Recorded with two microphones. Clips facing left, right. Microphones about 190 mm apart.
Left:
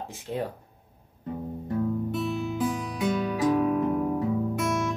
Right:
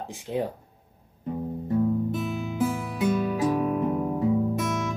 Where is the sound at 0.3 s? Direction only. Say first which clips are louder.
Right 3 dB; 20° right (ahead or behind).